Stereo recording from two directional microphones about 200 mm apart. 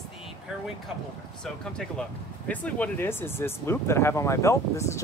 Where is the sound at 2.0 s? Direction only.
5° left (ahead or behind).